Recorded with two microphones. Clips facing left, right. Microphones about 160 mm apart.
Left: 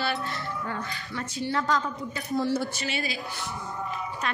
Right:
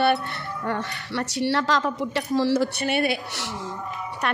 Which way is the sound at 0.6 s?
75° right (ahead or behind).